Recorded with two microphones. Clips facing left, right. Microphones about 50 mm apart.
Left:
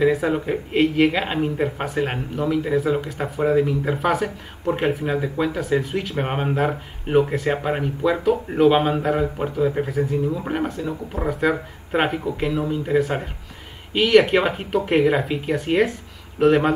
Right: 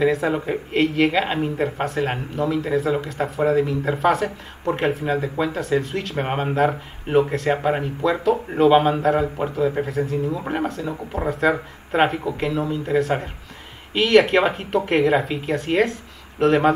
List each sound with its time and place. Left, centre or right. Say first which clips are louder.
0.0 s speech: left 1 dB; centre